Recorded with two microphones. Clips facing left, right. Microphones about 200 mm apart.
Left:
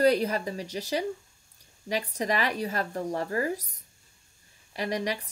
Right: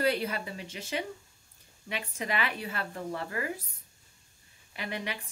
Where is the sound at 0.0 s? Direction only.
40° left (ahead or behind).